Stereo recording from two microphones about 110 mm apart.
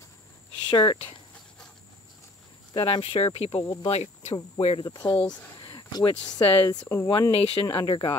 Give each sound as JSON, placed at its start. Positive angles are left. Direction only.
{"t": 0.7, "sound": "speech", "side_deg": 45}
{"t": 2.7, "sound": "speech", "side_deg": 45}
{"t": 3.6, "sound": "speech", "side_deg": 40}
{"t": 3.9, "sound": "speech", "side_deg": 85}
{"t": 4.8, "sound": "speech", "side_deg": 40}
{"t": 5.6, "sound": "a sound", "side_deg": 45}
{"t": 6.3, "sound": "speech", "side_deg": 35}
{"t": 7.1, "sound": "speech", "side_deg": 50}